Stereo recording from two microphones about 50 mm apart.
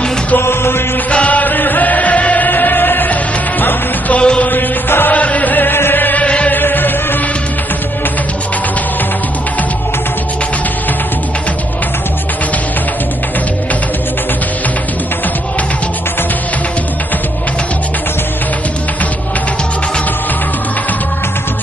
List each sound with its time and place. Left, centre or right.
0.4 s music: left
1.1 s music: left
4.2 s music: centre
4.5 s mantra: left
5.1 s music: left
6.2 s chant: left
6.5 s chant: left